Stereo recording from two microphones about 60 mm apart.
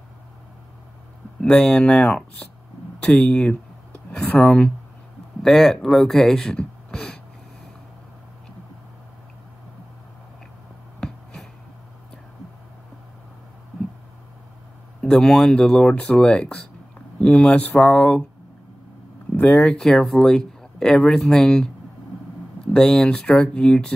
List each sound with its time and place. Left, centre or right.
1.4 s speech: centre
6.9 s a sound: centre
15.0 s speech: centre
19.3 s speech: centre
22.7 s speech: centre